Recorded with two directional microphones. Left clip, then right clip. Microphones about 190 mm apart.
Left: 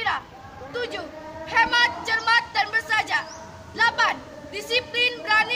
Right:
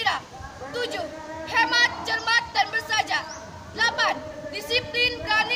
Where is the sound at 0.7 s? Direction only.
20° right (ahead or behind).